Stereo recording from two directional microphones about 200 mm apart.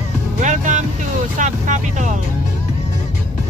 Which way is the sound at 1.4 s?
40° right (ahead or behind).